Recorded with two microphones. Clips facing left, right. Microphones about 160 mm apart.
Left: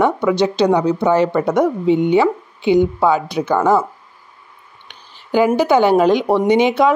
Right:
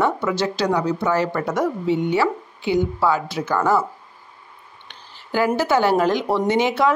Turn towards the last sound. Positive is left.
turn(degrees=15)  # may be behind; listen again after turning